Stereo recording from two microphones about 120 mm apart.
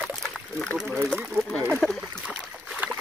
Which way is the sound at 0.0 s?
5° left (ahead or behind).